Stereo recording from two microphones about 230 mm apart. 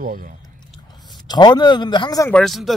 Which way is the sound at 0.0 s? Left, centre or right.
Right.